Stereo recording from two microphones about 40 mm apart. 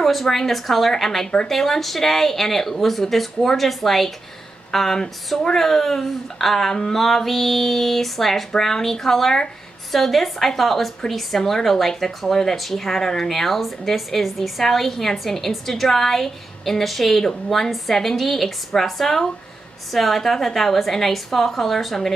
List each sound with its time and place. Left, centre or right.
0.0 s speech: centre
1.2 s speech: centre
1.5 s speech: centre